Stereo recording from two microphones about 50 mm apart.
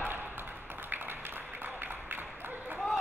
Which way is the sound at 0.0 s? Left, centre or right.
Right.